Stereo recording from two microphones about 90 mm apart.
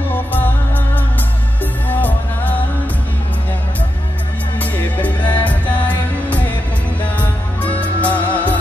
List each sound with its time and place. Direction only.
0.1 s music: 20° left (ahead or behind)
1.9 s music: 20° left (ahead or behind)
4.6 s music: 20° left (ahead or behind)